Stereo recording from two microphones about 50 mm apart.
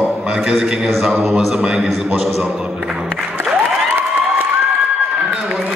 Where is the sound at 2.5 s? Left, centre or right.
Centre.